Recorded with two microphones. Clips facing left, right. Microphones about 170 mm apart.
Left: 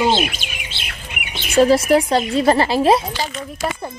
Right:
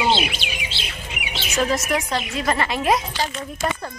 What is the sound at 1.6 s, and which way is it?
Speech, 30° left (ahead or behind).